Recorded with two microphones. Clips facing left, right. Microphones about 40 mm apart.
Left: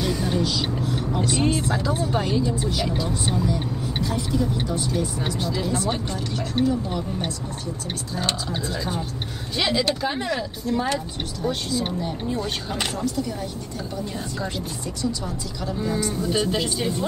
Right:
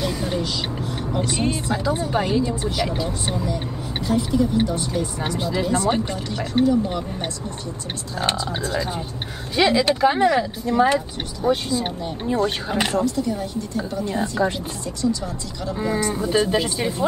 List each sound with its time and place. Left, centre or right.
0.0 s a sound: centre
0.8 s vehicle: centre
1.7 s speech: centre
9.6 s speech: centre
14.0 s speech: right
15.8 s speech: centre